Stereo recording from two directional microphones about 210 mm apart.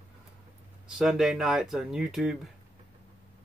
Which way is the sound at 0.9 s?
Centre (ahead or behind).